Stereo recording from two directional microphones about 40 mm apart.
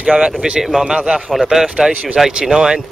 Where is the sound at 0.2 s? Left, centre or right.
Centre.